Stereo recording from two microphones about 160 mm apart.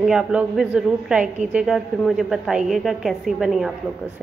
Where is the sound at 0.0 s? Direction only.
5° right (ahead or behind).